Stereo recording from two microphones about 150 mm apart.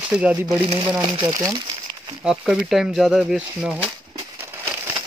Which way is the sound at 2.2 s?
5° right (ahead or behind).